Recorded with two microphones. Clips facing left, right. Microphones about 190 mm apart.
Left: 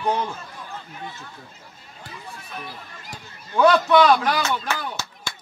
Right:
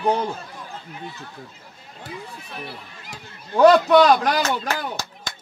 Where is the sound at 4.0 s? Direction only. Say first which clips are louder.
Right 1 dB; 40° right (ahead or behind).